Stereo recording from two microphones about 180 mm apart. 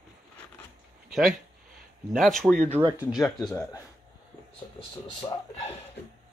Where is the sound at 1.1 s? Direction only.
Centre (ahead or behind).